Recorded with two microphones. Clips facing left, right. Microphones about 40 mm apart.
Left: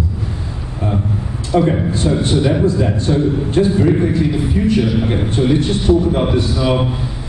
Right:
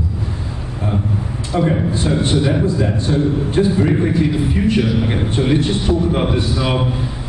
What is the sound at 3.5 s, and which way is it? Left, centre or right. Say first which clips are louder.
Speech: left 2 dB; centre.